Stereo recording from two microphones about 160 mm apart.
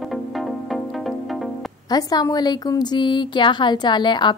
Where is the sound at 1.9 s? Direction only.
25° left (ahead or behind).